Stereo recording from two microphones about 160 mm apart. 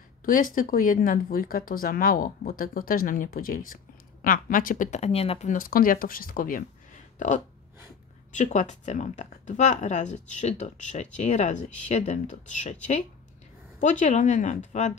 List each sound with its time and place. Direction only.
0.2 s speech: 60° left (ahead or behind); by 5.5 s 40° left (ahead or behind)
5.5 s speech: 60° left (ahead or behind)